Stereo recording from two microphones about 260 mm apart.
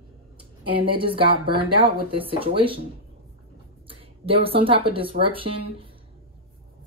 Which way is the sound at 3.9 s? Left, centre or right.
Right.